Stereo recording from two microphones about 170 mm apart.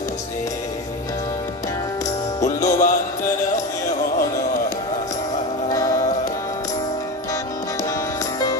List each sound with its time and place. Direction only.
2.4 s music: 50° left (ahead or behind)
5.7 s music: 20° left (ahead or behind)